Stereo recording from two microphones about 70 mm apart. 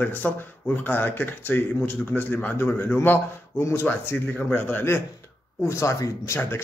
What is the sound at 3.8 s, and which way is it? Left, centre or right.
Speech, left.